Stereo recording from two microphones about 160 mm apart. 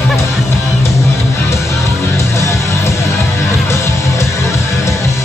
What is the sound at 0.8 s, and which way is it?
Music, 20° left (ahead or behind).